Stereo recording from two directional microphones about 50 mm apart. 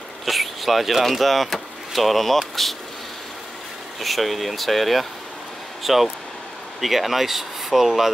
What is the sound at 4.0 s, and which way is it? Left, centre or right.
Speech, centre.